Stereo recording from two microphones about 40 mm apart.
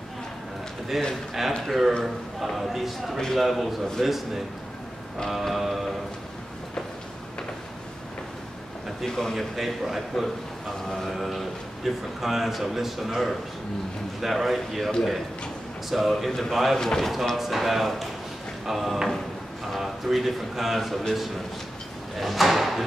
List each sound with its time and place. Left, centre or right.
0.9 s a man's voice: centre
5.3 s a man's voice: centre
9.0 s a man's voice: centre
15.9 s a man's voice: centre
17.1 s a man's voice: centre
22.1 s a sound: centre